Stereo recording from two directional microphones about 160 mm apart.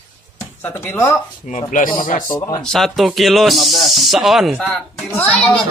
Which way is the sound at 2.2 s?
20° left (ahead or behind).